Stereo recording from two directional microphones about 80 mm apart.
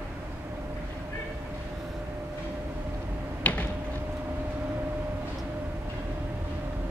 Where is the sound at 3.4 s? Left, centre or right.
Centre.